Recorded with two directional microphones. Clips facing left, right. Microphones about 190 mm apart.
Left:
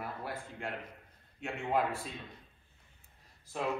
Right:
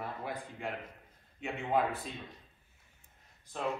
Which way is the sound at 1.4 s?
Centre (ahead or behind).